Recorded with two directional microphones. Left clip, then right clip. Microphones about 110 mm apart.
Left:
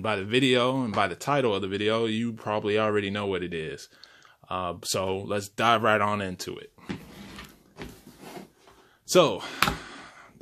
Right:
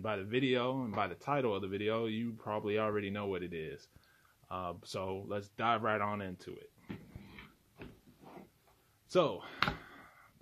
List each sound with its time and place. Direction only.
0.0 s speech: 10° left (ahead or behind)
9.0 s speech: 15° left (ahead or behind)
9.7 s a sound: 15° left (ahead or behind)